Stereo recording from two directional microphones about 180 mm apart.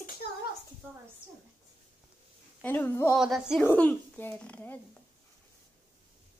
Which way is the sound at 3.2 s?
5° right (ahead or behind).